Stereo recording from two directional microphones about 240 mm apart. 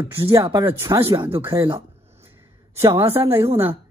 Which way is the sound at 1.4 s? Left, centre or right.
Right.